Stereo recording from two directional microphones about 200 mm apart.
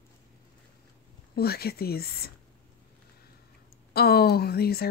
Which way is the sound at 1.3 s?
50° left (ahead or behind).